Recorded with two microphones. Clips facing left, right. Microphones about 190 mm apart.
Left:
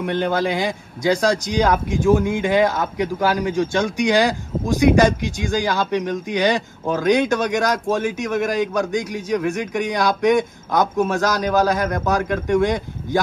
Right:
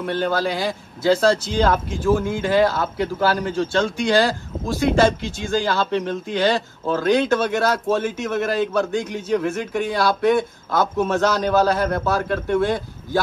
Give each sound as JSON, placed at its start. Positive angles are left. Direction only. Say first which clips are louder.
{"t": 0.0, "sound": "speech", "louder": "left 1 dB", "side_deg": 20}